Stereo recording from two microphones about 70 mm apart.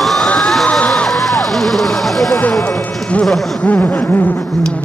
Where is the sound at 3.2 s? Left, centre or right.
Centre.